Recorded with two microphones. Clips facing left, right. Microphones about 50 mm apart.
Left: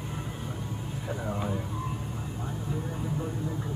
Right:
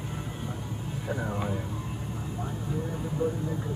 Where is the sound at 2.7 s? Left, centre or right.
Centre.